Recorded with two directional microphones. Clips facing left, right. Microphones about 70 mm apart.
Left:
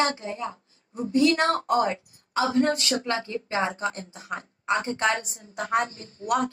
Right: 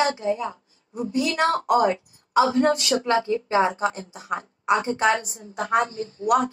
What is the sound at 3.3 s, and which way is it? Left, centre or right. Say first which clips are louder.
Speech: right 6 dB; right.